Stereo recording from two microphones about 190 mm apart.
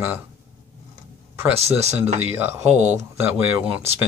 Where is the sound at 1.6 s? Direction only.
35° right (ahead or behind).